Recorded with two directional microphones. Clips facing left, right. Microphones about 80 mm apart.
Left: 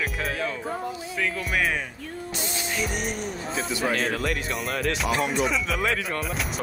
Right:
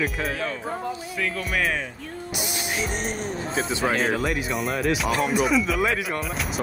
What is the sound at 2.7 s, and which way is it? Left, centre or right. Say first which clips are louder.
Music: even; right.